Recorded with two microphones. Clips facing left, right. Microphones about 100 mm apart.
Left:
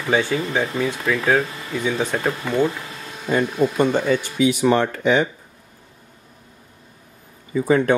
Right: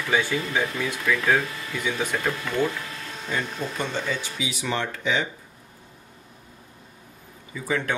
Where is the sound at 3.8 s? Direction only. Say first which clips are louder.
Left 8 dB; 50° left (ahead or behind).